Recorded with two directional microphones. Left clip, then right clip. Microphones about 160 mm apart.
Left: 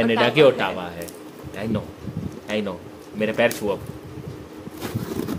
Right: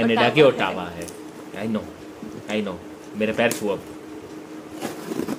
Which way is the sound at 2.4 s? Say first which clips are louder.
Even; 10° left (ahead or behind).